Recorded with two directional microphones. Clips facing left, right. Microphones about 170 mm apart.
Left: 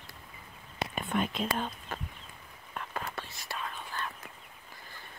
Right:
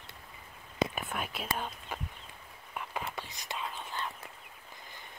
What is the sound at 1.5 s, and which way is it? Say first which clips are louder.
Speech: left 3 dB; 10° right (ahead or behind).